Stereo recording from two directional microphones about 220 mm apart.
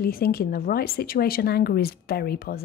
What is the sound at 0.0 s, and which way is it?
Speech, 45° left (ahead or behind).